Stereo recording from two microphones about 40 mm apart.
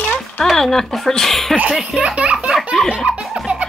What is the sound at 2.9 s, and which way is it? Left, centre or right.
Belly laugh, right.